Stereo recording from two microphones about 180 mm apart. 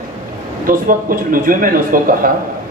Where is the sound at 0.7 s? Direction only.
50° right (ahead or behind).